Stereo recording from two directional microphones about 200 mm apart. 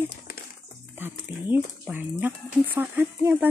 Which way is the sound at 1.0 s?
10° right (ahead or behind).